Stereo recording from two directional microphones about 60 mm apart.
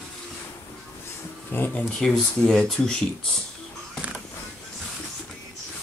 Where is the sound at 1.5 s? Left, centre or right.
Left.